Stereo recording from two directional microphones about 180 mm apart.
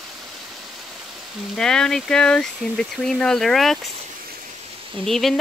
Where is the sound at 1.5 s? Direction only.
5° left (ahead or behind).